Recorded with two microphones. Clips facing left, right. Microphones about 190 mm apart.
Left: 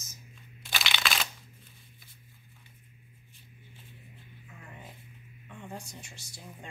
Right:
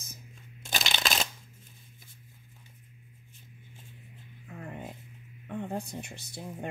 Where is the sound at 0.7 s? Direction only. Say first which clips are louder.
Right 2 dB; 45° right (ahead or behind).